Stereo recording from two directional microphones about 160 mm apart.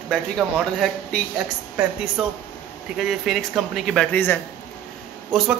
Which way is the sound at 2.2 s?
5° right (ahead or behind).